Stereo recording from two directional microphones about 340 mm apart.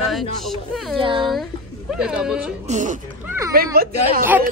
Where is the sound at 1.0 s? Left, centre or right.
Centre.